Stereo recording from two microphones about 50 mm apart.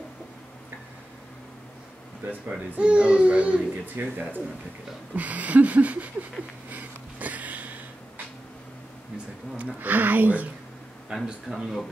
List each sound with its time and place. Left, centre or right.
2.8 s speech: right
3.8 s speech: right
5.1 s a sound: right
9.8 s a sound: right
11.1 s a man's voice: centre
11.4 s speech: centre